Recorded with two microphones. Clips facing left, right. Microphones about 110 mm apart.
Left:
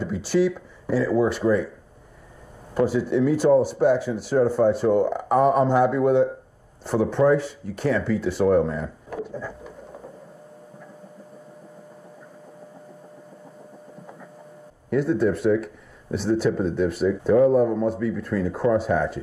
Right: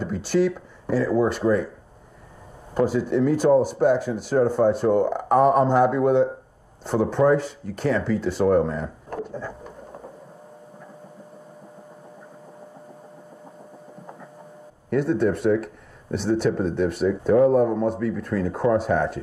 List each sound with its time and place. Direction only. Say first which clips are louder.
0.2 s speech: even; centre (ahead or behind)
2.7 s speech: even; centre (ahead or behind)
14.9 s speech: even; centre (ahead or behind)